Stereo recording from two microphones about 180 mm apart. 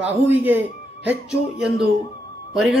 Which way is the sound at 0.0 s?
10° right (ahead or behind).